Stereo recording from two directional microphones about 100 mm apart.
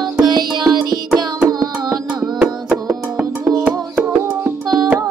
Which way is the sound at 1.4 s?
40° right (ahead or behind).